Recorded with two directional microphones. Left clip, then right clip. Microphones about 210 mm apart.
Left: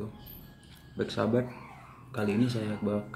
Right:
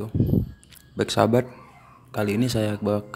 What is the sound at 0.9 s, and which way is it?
Speech, 50° right (ahead or behind).